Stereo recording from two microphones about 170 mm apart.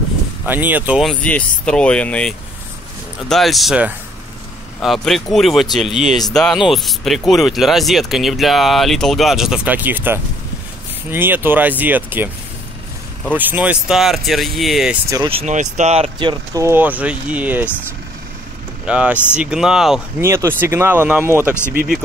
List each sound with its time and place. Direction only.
0.5 s speech: 10° right (ahead or behind)
1.2 s speech: 5° left (ahead or behind); by 12.3 s 10° right (ahead or behind)
13.3 s speech: 10° right (ahead or behind)
15.2 s speech: 40° right (ahead or behind)
16.6 s speech: 10° right (ahead or behind)
18.9 s speech: 5° right (ahead or behind)
20.2 s speech: 15° right (ahead or behind)